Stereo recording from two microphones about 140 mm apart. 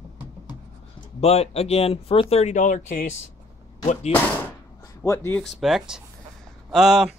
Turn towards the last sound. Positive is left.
turn(degrees=-5)  # may be behind; listen again after turning